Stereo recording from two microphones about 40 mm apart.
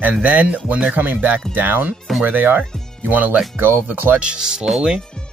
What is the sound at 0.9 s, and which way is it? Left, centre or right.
Speech, right.